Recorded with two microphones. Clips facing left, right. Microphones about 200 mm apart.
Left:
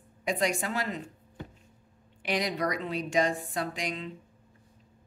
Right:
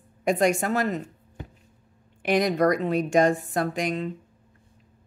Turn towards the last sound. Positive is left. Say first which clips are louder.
# right 8 dB
turn(degrees=-50)  # may be behind; listen again after turning